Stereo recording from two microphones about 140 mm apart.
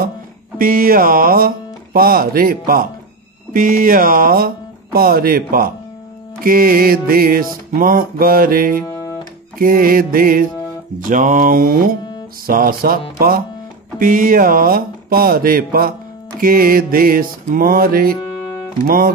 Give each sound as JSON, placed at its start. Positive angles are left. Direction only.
{"t": 0.6, "sound": "music", "side_deg": -90}
{"t": 3.5, "sound": "music", "side_deg": -75}
{"t": 8.8, "sound": "music", "side_deg": 25}
{"t": 9.6, "sound": "music", "side_deg": -90}
{"t": 11.0, "sound": "speech", "side_deg": -70}
{"t": 12.4, "sound": "music", "side_deg": -90}